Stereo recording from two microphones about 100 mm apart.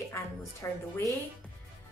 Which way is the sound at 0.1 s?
30° left (ahead or behind).